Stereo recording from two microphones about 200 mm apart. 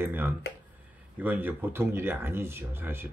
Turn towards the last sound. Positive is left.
turn(degrees=-10)  # may be behind; listen again after turning